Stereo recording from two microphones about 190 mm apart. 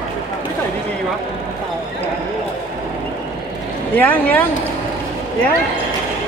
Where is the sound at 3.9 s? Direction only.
10° left (ahead or behind).